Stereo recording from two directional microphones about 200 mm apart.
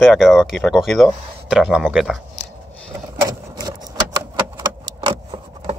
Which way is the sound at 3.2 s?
20° right (ahead or behind).